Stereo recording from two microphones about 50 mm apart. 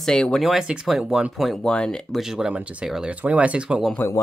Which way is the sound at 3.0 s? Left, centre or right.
Right.